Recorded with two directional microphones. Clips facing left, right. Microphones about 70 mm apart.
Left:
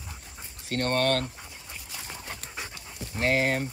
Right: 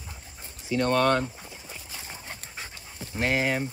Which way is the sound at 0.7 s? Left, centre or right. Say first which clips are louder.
Right 3 dB; left.